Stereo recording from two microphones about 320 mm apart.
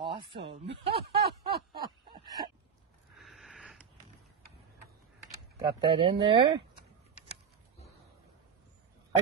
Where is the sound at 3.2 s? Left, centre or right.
Centre.